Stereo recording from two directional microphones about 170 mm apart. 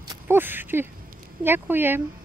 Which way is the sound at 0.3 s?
10° right (ahead or behind).